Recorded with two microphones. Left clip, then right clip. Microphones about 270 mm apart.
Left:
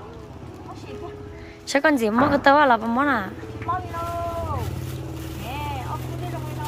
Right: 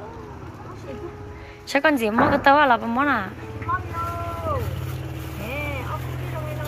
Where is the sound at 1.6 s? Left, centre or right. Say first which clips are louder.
Even; centre.